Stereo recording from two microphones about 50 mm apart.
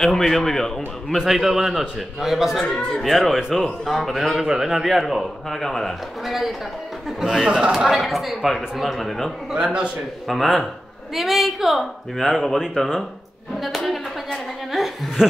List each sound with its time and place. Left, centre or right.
0.0 s a man's voice: centre
1.2 s a man's voice: centre
2.6 s a man's voice: centre
3.0 s a man's voice: centre
7.4 s a man's voice: right
7.9 s a man's voice: centre
9.6 s a man's voice: right
10.2 s a man's voice: centre
13.6 s a sound: centre